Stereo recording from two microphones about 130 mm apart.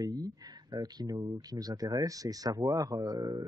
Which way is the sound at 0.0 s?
30° right (ahead or behind).